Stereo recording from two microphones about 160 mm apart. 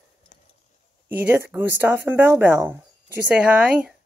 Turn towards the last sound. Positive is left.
turn(degrees=-5)  # may be behind; listen again after turning